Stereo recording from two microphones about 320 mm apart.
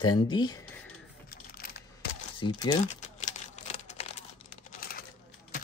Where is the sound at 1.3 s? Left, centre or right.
Left.